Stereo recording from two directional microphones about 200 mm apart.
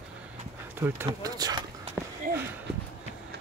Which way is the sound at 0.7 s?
10° right (ahead or behind).